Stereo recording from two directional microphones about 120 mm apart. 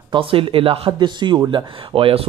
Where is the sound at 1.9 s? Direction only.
50° right (ahead or behind).